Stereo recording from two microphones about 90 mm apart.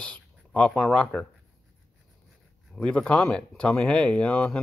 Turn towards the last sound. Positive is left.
turn(degrees=10)  # may be behind; listen again after turning